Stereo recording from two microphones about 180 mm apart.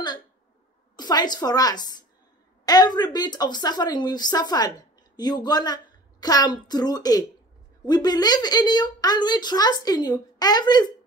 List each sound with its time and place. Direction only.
0.9 s a woman's voice: 20° left (ahead or behind)